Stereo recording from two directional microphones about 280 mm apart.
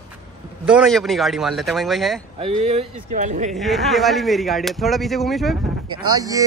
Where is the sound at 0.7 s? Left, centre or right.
Centre.